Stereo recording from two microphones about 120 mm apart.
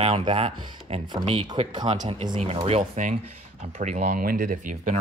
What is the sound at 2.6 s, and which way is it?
Speech, 70° right (ahead or behind).